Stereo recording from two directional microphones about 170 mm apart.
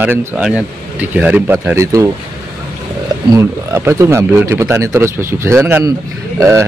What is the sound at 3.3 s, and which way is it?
Mantra, 15° right (ahead or behind).